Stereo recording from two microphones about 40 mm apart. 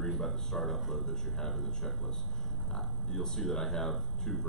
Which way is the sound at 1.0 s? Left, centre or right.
Centre.